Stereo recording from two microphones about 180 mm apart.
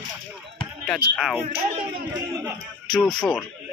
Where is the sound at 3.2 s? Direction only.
5° left (ahead or behind).